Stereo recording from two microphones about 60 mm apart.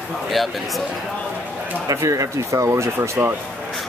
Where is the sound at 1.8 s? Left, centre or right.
Right.